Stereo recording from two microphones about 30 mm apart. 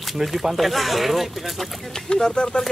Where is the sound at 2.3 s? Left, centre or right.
Left.